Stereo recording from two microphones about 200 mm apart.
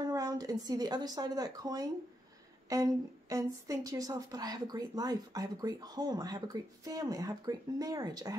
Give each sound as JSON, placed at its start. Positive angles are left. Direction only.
{"t": 0.0, "sound": "a woman's voice", "side_deg": -15}